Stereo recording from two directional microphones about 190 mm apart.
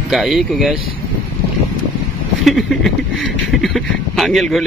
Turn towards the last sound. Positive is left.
turn(degrees=0)  # may be behind; listen again after turning